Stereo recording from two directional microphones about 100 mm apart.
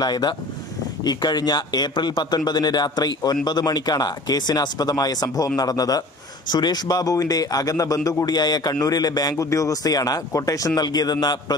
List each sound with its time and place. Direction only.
0.0 s a man's voice: 45° left (ahead or behind)